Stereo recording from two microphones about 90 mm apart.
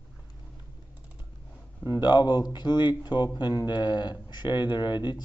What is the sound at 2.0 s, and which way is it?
Speech, 55° left (ahead or behind).